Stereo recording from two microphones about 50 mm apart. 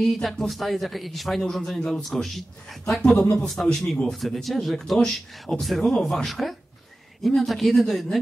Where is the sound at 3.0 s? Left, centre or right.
Centre.